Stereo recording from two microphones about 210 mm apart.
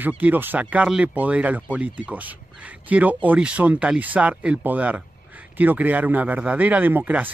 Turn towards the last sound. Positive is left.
turn(degrees=-10)  # may be behind; listen again after turning